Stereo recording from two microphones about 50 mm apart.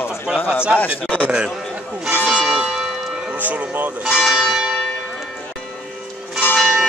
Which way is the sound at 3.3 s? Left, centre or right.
Right.